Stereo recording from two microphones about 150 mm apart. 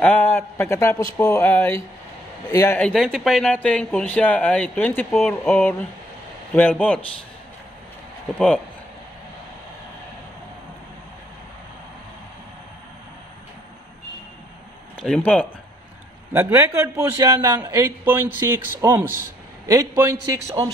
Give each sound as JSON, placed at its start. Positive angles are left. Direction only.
{"t": 0.0, "sound": "speech", "side_deg": 10}
{"t": 2.8, "sound": "speech", "side_deg": 0}
{"t": 5.5, "sound": "speech", "side_deg": 10}
{"t": 15.0, "sound": "speech", "side_deg": 5}
{"t": 16.3, "sound": "a man's voice", "side_deg": -15}